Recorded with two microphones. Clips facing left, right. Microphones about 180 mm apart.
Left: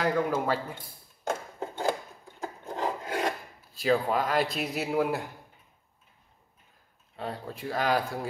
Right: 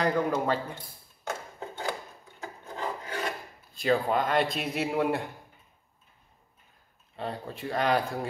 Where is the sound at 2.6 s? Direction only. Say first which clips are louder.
Left 3 dB; 60° left (ahead or behind).